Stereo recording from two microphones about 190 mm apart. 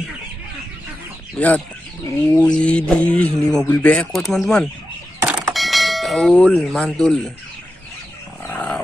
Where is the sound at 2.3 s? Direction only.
5° left (ahead or behind).